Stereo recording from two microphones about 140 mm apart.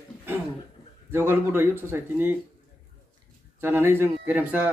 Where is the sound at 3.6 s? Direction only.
15° right (ahead or behind).